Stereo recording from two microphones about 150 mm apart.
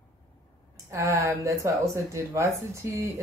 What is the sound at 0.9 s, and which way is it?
Speech, 20° right (ahead or behind).